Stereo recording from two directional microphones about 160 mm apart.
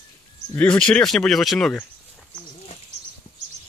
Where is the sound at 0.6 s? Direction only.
5° left (ahead or behind).